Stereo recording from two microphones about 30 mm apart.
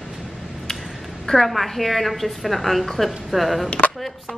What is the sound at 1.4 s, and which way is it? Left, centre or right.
A woman's voice, centre.